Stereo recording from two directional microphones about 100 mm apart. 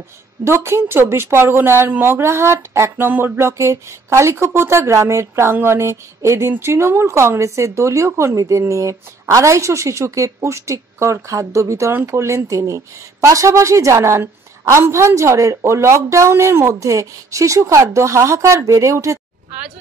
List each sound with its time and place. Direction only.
0.4 s a woman's voice: 25° right (ahead or behind)